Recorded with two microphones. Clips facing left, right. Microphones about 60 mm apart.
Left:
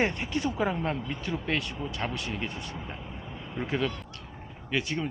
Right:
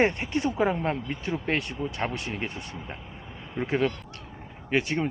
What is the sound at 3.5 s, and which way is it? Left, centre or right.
Speech, right.